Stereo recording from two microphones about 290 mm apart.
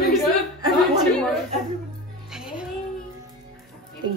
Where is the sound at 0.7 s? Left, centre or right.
Centre.